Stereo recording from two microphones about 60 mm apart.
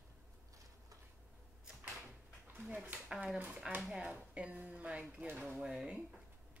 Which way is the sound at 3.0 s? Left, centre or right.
Centre.